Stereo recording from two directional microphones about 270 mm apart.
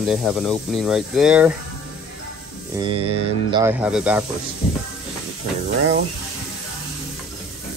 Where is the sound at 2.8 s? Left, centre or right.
Centre.